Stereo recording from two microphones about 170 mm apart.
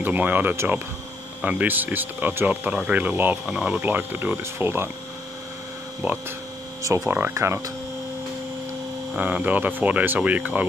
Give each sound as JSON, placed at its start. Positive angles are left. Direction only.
{"t": 0.0, "sound": "speech", "side_deg": -10}
{"t": 6.0, "sound": "speech", "side_deg": -15}
{"t": 9.1, "sound": "speech", "side_deg": -10}